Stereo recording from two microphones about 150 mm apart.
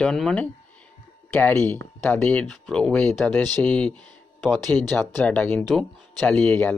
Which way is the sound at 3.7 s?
10° left (ahead or behind).